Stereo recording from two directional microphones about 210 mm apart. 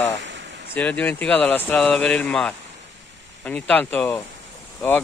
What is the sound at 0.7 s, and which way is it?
Speech, 5° left (ahead or behind).